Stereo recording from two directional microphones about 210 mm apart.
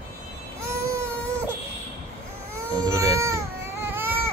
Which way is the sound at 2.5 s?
15° right (ahead or behind).